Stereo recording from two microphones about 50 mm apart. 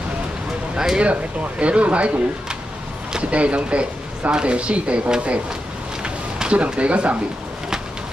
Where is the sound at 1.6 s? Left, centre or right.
Right.